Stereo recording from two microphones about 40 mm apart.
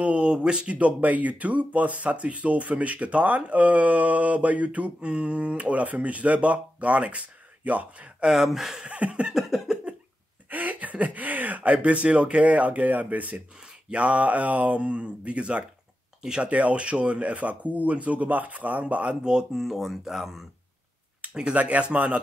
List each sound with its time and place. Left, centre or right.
0.0 s speech: right
0.7 s speech: right
8.3 s speech: centre
8.8 s a sound: right
9.7 s cough: centre
10.5 s speech: right; by 16.4 s centre
16.4 s speech: right
19.2 s speech: centre
21.5 s speech: right